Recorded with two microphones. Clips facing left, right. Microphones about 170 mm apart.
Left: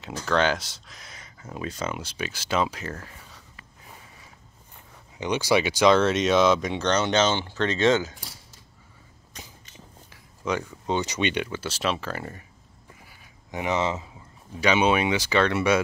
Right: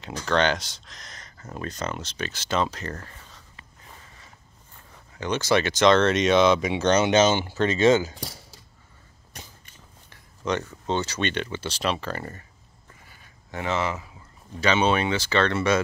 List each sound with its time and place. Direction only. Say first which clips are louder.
0.0 s speech: even; 5° left (ahead or behind)
3.8 s a sound: left 1 dB; 10° left (ahead or behind)
5.2 s speech: even; 15° left (ahead or behind); by 8.1 s 5° right (ahead or behind)
10.0 s speech: right 1 dB; 5° left (ahead or behind)
13.0 s a sound: left 1 dB; 10° left (ahead or behind)
14.5 s speech: left 1 dB; 10° left (ahead or behind)